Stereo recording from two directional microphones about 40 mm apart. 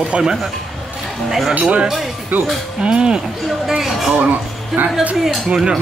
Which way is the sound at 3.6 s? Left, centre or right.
Centre.